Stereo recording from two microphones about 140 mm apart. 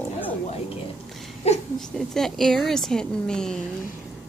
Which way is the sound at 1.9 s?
5° left (ahead or behind).